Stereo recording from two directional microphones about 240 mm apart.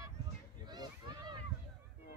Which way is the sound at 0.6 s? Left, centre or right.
Centre.